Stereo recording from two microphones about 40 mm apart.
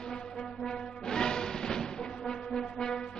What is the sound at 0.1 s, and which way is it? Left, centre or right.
Music, centre.